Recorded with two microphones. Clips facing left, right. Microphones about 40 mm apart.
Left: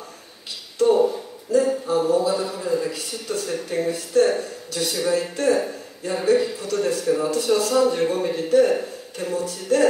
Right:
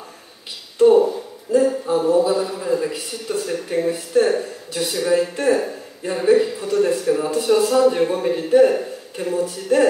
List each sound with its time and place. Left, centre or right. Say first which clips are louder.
0.7 s a sound: right 4 dB; centre
2.0 s a man's voice: right 3 dB; centre
5.3 s a man's voice: right 2 dB; centre